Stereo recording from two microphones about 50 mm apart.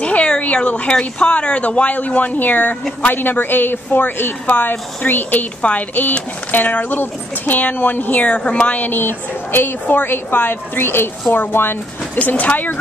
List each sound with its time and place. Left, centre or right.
0.0 s a woman's voice: left
8.7 s a woman's voice: left
12.2 s speech: left